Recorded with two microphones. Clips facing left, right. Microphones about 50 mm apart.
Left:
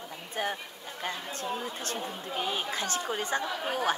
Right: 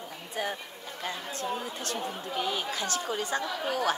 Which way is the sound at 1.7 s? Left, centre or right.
Left.